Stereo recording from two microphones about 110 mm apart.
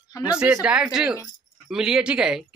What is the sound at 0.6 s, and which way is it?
Speech, 10° right (ahead or behind).